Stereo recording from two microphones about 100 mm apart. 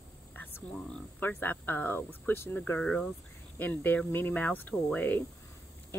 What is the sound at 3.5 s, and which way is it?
Speech, 20° left (ahead or behind).